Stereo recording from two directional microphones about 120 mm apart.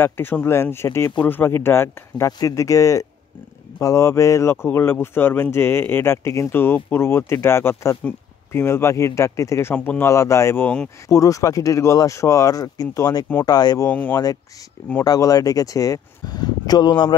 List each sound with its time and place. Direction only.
0.0 s speech: 15° left (ahead or behind)
11.1 s speech: 30° left (ahead or behind)
13.8 s speech: 15° left (ahead or behind)
14.1 s speech: 30° left (ahead or behind)